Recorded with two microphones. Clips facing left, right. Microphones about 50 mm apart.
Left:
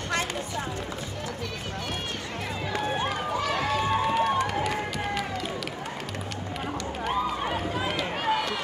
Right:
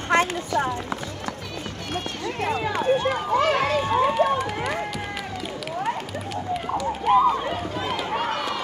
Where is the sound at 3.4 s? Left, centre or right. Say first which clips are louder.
Right 7 dB; right.